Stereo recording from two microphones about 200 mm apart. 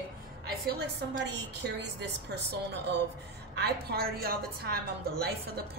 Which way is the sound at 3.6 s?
50° right (ahead or behind).